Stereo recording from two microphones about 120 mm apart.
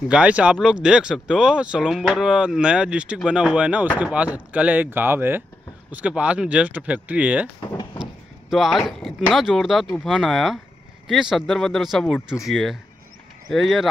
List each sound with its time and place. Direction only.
0.1 s speech: 10° right (ahead or behind)
7.6 s door: 35° left (ahead or behind)
8.0 s a sound: centre (ahead or behind)
9.3 s speech: centre (ahead or behind)